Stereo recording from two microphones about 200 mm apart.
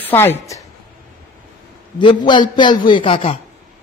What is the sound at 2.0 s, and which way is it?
A man's voice, 25° left (ahead or behind).